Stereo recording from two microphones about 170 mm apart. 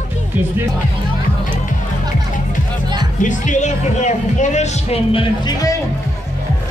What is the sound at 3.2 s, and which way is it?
Speech, 45° left (ahead or behind).